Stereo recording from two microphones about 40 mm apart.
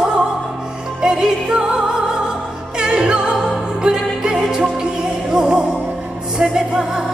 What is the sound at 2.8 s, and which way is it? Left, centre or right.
Music, right.